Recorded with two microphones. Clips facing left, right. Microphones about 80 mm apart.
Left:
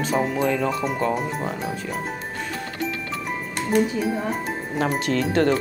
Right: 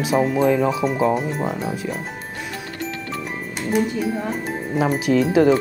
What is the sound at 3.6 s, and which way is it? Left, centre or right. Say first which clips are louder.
Music: even; centre.